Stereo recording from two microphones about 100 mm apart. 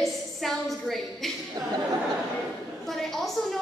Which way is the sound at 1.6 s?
35° right (ahead or behind).